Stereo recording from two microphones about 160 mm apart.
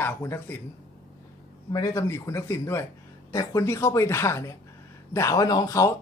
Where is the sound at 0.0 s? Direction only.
15° left (ahead or behind).